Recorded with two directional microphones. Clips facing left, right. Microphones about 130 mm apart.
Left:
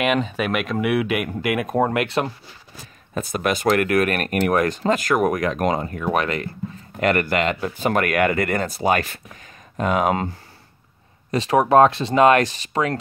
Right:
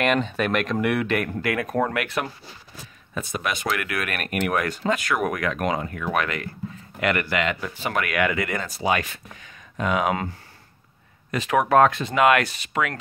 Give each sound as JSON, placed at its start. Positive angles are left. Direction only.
{"t": 0.0, "sound": "speech", "side_deg": 5}
{"t": 3.3, "sound": "speech", "side_deg": 45}
{"t": 11.3, "sound": "speech", "side_deg": 30}